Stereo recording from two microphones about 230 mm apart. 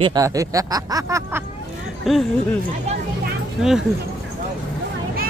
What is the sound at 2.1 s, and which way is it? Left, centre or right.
Speech, centre.